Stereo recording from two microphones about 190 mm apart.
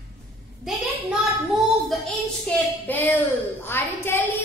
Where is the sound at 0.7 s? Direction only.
Centre (ahead or behind).